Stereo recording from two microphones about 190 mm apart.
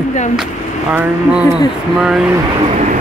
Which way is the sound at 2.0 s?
5° right (ahead or behind).